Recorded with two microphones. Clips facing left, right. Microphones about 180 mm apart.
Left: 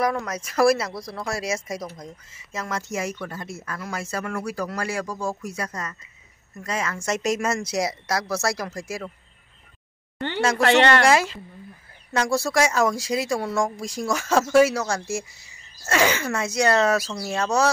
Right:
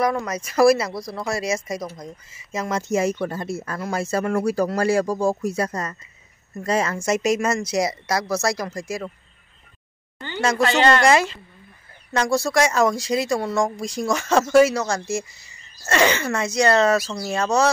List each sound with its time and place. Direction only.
0.0 s speech: centre (ahead or behind)
2.3 s speech: 15° right (ahead or behind); by 7.0 s 35° right (ahead or behind)
7.0 s speech: 10° right (ahead or behind)
10.6 s speech: 70° left (ahead or behind)
11.1 s speech: 5° left (ahead or behind)